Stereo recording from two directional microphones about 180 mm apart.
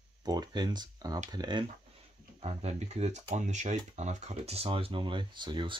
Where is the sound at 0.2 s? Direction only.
20° right (ahead or behind).